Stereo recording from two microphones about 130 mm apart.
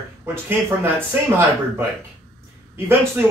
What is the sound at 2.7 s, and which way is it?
Speech, 20° right (ahead or behind).